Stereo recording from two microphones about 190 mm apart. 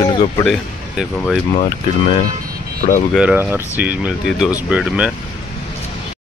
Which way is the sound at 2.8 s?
40° left (ahead or behind).